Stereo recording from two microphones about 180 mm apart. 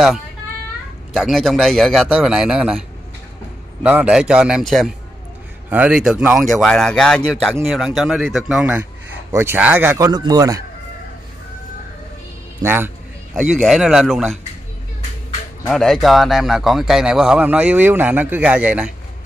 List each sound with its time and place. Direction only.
1.1 s a man's voice: centre (ahead or behind)
3.8 s a man's voice: 5° right (ahead or behind)
12.6 s a man's voice: 10° right (ahead or behind)
13.3 s a man's voice: centre (ahead or behind)
15.6 s a man's voice: centre (ahead or behind)